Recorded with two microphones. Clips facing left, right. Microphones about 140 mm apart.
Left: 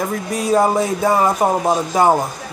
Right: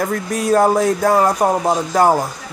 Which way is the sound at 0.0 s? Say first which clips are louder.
Right 1 dB; centre (ahead or behind).